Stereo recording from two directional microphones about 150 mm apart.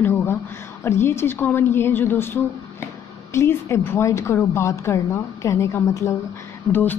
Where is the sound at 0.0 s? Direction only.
15° left (ahead or behind).